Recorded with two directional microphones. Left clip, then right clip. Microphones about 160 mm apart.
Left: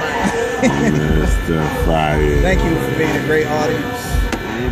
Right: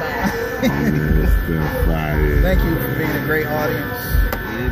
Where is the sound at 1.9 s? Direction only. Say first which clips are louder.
Left 6 dB; 15° left (ahead or behind).